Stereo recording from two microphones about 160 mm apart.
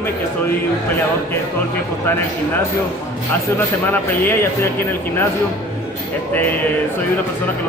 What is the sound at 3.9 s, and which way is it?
Speech, 15° left (ahead or behind).